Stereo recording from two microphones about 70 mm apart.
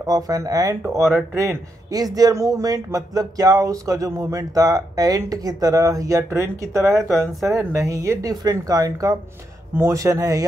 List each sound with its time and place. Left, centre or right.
0.0 s speech: right
0.9 s speech: right
9.8 s speech: right